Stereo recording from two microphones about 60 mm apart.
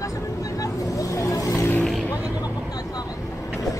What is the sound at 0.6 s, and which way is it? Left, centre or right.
Vehicle, left.